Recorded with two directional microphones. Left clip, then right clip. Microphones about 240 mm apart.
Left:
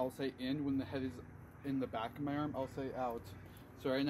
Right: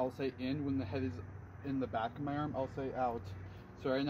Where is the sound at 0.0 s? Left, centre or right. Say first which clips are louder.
Right 2 dB; centre.